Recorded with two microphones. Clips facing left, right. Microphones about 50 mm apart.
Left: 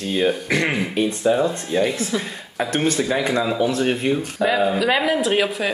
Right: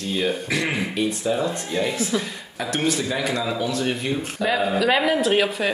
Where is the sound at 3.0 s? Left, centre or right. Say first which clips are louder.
Left 4 dB; centre.